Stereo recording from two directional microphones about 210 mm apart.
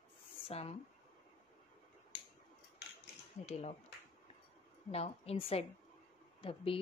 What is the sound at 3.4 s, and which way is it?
Speech, 30° left (ahead or behind).